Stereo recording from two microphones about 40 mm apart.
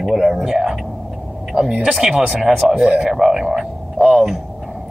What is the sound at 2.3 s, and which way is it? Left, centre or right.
Speech, centre.